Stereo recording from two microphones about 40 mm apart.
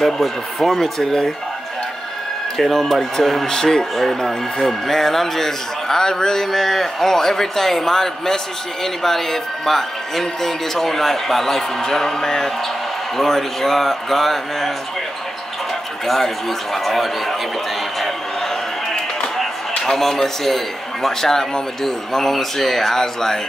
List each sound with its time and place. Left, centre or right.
0.0 s speech: centre
2.5 s speech: centre
3.9 s speech: centre
16.1 s a man's voice: centre
19.9 s speech: centre